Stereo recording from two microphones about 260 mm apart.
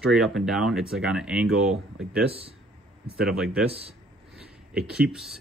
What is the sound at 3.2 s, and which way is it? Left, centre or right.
Speech, centre.